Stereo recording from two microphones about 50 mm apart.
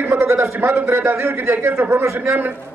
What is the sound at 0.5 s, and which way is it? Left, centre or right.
A man's voice, right.